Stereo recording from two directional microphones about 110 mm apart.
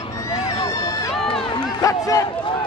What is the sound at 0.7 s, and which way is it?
Run, 30° left (ahead or behind).